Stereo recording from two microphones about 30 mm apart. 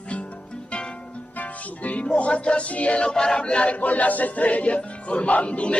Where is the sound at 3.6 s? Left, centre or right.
Left.